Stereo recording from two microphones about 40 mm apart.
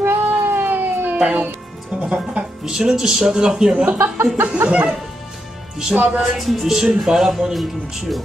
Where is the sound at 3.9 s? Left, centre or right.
Right.